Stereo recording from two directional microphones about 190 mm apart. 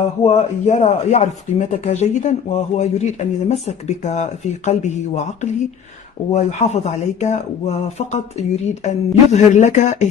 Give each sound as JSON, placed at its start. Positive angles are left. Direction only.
{"t": 0.2, "sound": "speech", "side_deg": 35}